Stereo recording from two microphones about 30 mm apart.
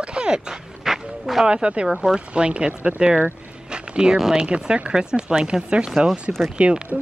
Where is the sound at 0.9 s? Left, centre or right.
Centre.